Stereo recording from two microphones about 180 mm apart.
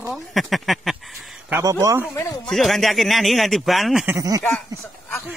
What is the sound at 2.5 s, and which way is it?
A man's voice, centre (ahead or behind).